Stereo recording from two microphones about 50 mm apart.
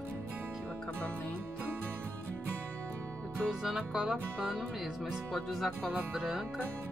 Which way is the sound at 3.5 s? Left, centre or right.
Centre.